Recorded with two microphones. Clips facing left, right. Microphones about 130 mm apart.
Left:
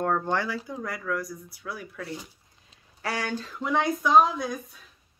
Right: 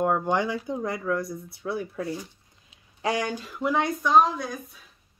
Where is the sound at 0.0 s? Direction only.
15° right (ahead or behind).